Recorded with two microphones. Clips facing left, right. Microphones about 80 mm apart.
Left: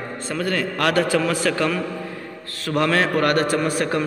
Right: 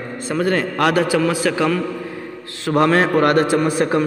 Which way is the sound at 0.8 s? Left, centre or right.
Centre.